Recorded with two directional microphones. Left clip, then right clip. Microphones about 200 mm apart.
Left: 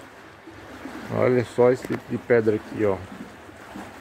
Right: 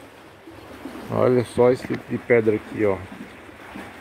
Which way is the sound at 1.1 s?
10° right (ahead or behind).